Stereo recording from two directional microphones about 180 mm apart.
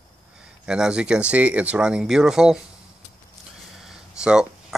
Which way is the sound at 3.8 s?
5° right (ahead or behind).